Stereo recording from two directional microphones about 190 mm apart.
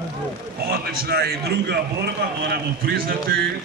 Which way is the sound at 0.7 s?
55° right (ahead or behind).